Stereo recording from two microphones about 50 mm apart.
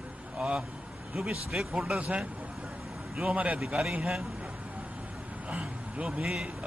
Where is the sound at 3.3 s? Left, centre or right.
Right.